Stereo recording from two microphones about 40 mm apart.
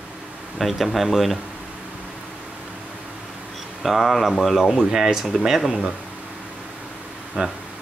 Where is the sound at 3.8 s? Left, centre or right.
Centre.